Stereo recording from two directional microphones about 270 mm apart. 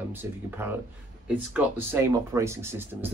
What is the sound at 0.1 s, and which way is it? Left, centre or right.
Speech, centre.